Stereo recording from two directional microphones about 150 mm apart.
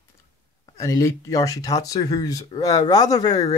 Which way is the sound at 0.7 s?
20° left (ahead or behind).